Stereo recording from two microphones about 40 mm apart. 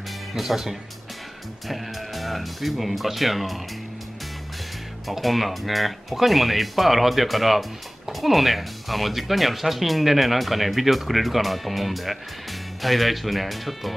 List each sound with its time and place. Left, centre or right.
0.3 s speech: centre
1.7 s speech: centre
5.0 s speech: centre